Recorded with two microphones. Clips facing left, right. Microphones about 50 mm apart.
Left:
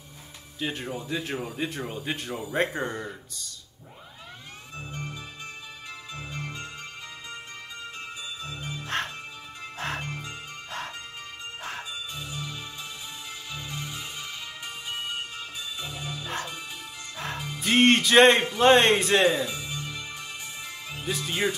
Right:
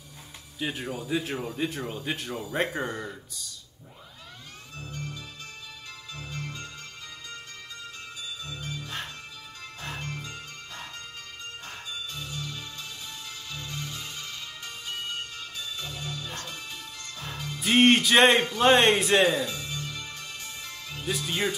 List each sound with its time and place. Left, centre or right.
0.6 s speech: centre
2.6 s speech: centre
4.7 s music: left
8.5 s music: left
8.8 s music: left
10.0 s music: centre
11.9 s music: centre
17.6 s music: centre
18.6 s speech: centre
19.4 s music: centre